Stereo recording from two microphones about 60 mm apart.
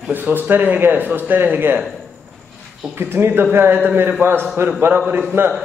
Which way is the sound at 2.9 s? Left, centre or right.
Right.